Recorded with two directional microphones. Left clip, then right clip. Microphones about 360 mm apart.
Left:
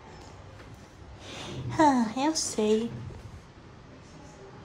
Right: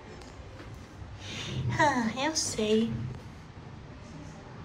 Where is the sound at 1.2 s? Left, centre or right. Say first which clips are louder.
Right 2 dB; centre.